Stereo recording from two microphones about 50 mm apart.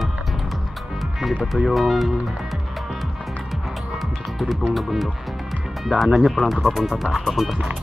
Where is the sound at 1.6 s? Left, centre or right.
Centre.